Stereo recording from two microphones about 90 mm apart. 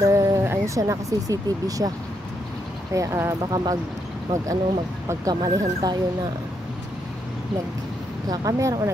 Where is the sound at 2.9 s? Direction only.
35° right (ahead or behind).